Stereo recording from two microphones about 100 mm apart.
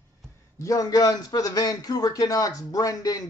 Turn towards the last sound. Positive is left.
turn(degrees=35)  # may be behind; listen again after turning